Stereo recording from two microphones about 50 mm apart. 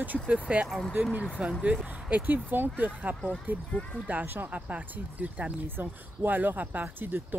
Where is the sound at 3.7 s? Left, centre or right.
Left.